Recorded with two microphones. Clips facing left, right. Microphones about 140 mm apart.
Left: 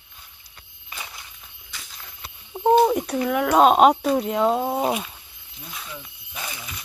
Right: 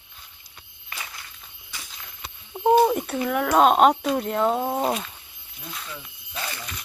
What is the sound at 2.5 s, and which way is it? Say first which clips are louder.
Speech: left 1 dB; centre (ahead or behind).